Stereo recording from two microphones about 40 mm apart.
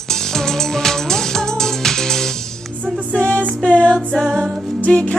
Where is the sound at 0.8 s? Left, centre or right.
Centre.